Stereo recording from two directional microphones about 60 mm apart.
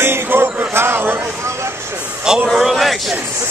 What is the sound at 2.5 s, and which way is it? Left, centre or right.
Speech, centre.